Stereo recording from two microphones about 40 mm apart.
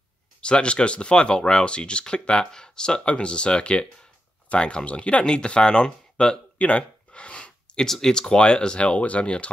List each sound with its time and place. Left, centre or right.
0.4 s speech: left
6.6 s gasp: left
7.7 s speech: centre; by 9.5 s left